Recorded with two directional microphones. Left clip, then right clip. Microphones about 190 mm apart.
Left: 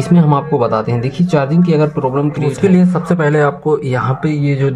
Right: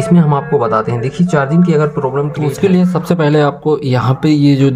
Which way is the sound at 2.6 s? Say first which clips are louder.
Even; 15° right (ahead or behind).